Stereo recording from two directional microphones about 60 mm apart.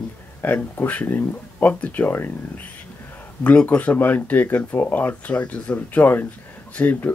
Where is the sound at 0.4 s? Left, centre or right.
Left.